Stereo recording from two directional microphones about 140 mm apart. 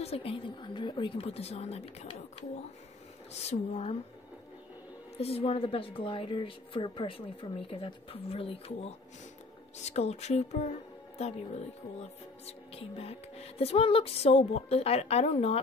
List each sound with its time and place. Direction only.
0.0 s speech: 45° left (ahead or behind)
3.4 s speech: 45° left (ahead or behind)
5.1 s a woman's voice: 45° left (ahead or behind)